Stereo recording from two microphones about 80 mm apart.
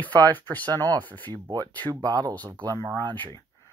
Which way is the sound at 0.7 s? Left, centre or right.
Right.